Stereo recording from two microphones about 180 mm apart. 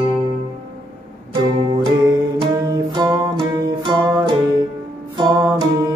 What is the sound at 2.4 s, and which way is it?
Music, 20° right (ahead or behind).